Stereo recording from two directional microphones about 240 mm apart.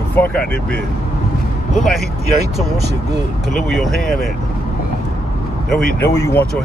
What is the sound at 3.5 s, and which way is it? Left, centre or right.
Speech, centre.